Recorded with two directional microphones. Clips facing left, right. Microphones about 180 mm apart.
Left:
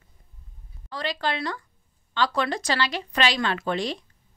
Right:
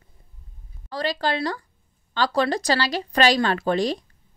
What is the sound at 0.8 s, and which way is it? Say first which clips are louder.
A woman's voice: right 4 dB; 40° right (ahead or behind).